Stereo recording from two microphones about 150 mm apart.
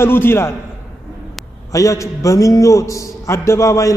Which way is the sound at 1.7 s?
20° left (ahead or behind).